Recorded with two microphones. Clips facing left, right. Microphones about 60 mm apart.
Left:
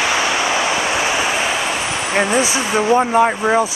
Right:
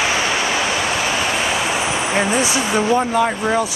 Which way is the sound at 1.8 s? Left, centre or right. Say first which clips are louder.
Right 1 dB; centre.